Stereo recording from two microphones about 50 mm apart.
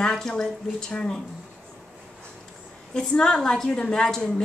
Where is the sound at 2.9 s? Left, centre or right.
Centre.